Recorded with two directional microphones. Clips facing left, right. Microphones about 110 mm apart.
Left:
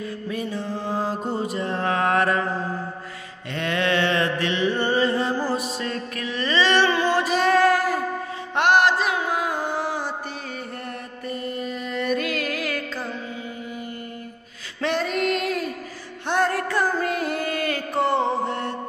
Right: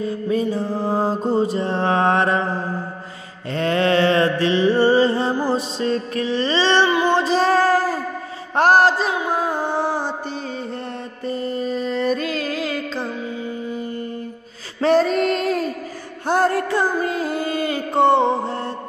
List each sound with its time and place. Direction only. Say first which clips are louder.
0.0 s mantra: right 8 dB; 30° right (ahead or behind)
5.3 s music: right 3 dB; 20° right (ahead or behind)
6.9 s child singing: right 4 dB; 20° right (ahead or behind)
8.5 s music: right 4 dB; 35° right (ahead or behind)
11.2 s music: right 6 dB; 30° right (ahead or behind)
14.8 s female singing: right 8 dB; 35° right (ahead or behind)
16.3 s music: right 4 dB; 35° right (ahead or behind)